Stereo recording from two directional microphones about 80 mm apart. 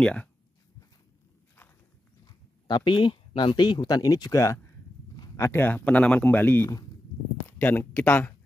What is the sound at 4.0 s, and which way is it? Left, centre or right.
Speech, left.